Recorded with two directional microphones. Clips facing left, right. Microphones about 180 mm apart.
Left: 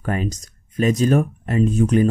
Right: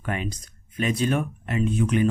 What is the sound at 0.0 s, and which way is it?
Speech, 40° left (ahead or behind).